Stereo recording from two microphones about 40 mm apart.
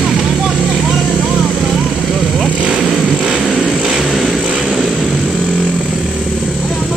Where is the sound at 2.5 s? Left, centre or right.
Right.